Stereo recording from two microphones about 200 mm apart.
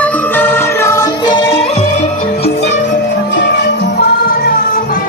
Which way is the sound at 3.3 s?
60° left (ahead or behind).